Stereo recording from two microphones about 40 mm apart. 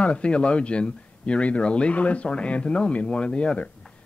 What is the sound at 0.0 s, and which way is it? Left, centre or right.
Speech, left.